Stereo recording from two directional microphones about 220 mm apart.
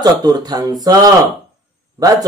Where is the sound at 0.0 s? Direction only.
15° right (ahead or behind).